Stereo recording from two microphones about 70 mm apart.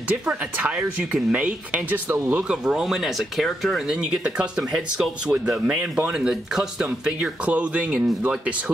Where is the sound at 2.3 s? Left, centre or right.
Centre.